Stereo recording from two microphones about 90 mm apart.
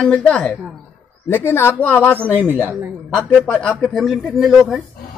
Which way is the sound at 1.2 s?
25° left (ahead or behind).